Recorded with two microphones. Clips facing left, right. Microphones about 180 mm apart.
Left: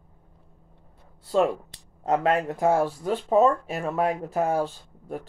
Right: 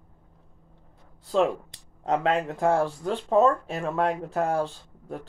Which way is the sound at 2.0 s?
5° left (ahead or behind).